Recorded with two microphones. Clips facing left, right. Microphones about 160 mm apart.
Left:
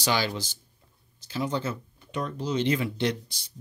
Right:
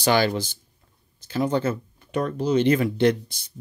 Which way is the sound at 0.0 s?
55° right (ahead or behind).